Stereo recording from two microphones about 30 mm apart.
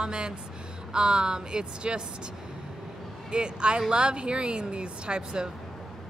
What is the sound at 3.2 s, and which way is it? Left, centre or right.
Speech, right.